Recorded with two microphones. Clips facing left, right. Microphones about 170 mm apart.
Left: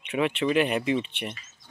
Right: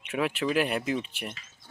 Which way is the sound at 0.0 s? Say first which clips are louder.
Left 3 dB; centre (ahead or behind).